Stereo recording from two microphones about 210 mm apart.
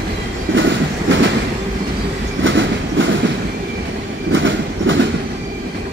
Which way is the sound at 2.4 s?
65° right (ahead or behind).